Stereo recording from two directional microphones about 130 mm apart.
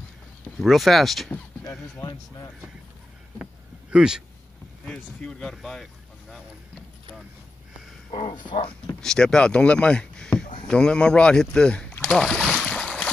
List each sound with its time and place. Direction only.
0.6 s speech: centre (ahead or behind)
2.0 s speech: 30° left (ahead or behind)
3.9 s speech: 5° right (ahead or behind)
4.8 s speech: 10° left (ahead or behind)
8.1 s speech: 40° left (ahead or behind)
9.0 s speech: 5° left (ahead or behind)
10.7 s rowboat: 5° left (ahead or behind)